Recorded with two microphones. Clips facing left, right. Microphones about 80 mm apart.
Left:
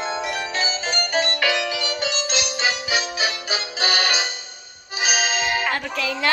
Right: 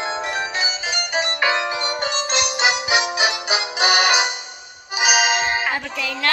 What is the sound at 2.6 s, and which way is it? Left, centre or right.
Music, centre.